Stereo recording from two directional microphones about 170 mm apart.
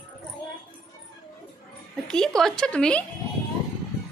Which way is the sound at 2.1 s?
5° left (ahead or behind).